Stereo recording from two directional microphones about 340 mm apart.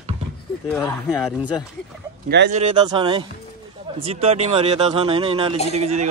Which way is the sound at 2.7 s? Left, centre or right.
Centre.